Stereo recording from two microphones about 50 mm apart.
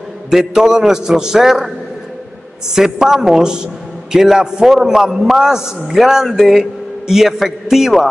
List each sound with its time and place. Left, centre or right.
0.3 s a man's voice: centre
2.7 s a man's voice: centre